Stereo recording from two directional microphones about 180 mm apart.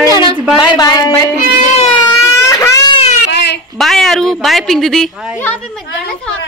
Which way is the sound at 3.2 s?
70° left (ahead or behind).